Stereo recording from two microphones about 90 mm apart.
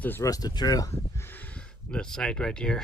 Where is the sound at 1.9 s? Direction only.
10° left (ahead or behind).